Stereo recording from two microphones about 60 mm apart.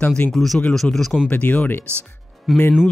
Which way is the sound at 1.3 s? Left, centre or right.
Left.